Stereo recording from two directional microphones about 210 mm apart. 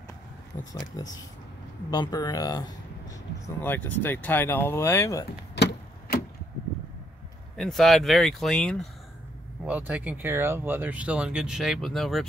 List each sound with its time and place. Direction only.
0.7 s speech: 20° left (ahead or behind)
5.6 s a sound: 55° left (ahead or behind)
7.5 s speech: centre (ahead or behind)